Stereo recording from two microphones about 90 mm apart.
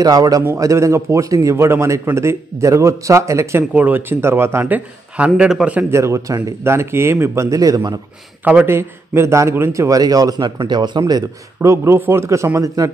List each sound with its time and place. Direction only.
0.0 s a man's voice: 45° right (ahead or behind)
3.7 s a man's voice: 20° right (ahead or behind)
5.9 s speech: 30° right (ahead or behind)
8.5 s a man's voice: 20° right (ahead or behind); by 11.7 s 45° right (ahead or behind)
11.7 s speech: 30° right (ahead or behind)